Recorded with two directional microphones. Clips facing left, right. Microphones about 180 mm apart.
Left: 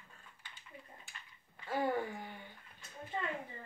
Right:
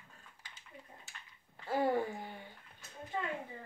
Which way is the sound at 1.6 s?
30° right (ahead or behind).